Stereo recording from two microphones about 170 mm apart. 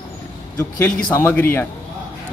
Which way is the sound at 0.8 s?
10° left (ahead or behind).